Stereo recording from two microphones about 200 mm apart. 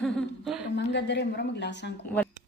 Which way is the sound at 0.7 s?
60° left (ahead or behind).